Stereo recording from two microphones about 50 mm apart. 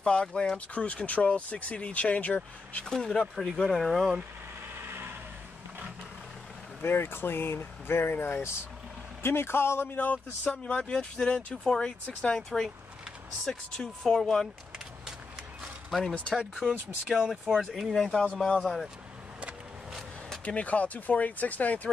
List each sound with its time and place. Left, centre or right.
0.0 s speech: centre
2.8 s speech: centre
4.8 s vehicle: right
6.8 s speech: left
9.9 s speech: left
10.5 s speech: left
15.9 s speech: centre
20.4 s speech: left